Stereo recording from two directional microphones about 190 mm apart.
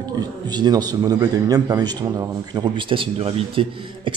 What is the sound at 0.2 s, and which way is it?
A man's voice, 20° right (ahead or behind).